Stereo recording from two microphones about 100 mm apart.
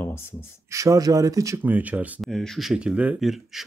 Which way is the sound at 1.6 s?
15° right (ahead or behind).